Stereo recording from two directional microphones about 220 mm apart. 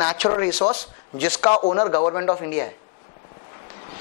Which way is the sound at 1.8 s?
15° left (ahead or behind).